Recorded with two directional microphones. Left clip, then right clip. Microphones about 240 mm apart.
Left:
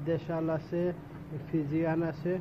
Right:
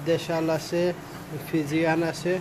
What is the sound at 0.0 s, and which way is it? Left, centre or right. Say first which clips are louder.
Speech: right 7 dB; centre.